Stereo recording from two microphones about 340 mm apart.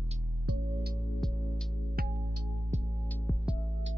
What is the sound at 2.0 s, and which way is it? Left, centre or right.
Music, right.